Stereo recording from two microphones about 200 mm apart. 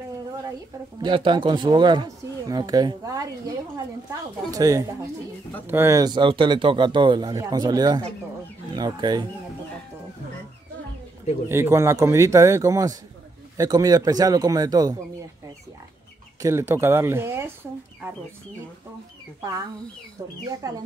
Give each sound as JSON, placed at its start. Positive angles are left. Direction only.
{"t": 1.0, "sound": "speech", "side_deg": -25}
{"t": 11.4, "sound": "speech", "side_deg": -10}
{"t": 16.3, "sound": "speech", "side_deg": -15}
{"t": 20.4, "sound": "speech", "side_deg": -20}